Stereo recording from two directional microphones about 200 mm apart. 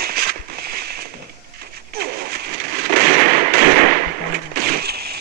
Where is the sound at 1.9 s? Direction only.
50° right (ahead or behind).